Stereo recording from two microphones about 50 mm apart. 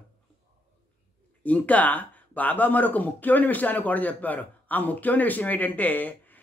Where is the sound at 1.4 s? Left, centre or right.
Left.